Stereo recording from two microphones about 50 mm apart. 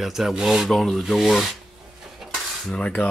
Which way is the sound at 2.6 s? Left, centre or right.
Left.